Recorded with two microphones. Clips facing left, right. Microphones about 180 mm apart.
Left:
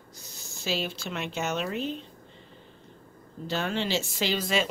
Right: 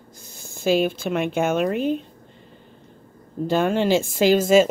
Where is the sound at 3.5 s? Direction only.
50° right (ahead or behind).